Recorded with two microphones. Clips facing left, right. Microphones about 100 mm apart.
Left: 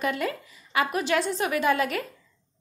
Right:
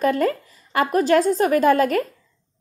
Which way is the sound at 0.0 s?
40° right (ahead or behind).